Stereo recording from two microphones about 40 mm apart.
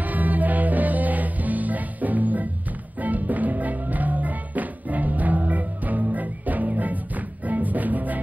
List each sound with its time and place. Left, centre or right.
0.0 s music: right